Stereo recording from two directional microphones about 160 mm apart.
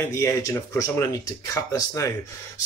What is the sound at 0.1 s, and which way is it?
Speech, 20° left (ahead or behind).